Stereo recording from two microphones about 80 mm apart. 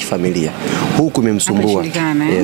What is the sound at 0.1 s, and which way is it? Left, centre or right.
Speech, centre.